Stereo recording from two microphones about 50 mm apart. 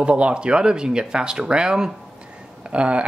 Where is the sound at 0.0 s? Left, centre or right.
Right.